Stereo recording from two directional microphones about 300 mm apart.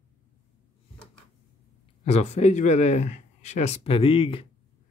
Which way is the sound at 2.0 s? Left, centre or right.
Left.